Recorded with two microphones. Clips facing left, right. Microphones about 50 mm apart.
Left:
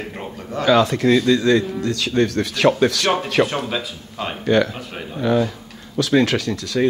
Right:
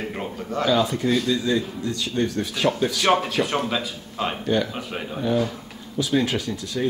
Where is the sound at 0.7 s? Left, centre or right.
Left.